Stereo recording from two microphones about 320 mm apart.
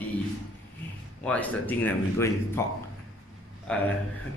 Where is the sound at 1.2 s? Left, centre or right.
Centre.